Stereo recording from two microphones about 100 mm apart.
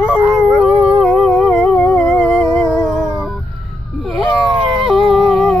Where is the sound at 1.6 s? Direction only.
20° left (ahead or behind).